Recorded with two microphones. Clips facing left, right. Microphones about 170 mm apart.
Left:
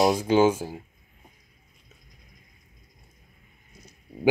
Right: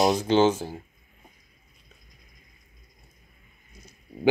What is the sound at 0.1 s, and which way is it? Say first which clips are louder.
Speech: even; 10° left (ahead or behind).